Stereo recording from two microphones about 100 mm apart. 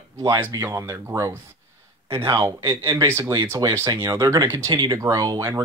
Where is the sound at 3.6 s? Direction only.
40° right (ahead or behind).